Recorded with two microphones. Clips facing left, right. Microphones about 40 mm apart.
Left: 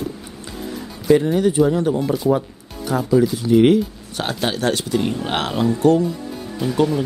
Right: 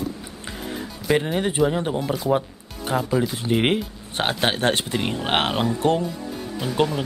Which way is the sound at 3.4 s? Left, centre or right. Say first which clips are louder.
Left 7 dB; right.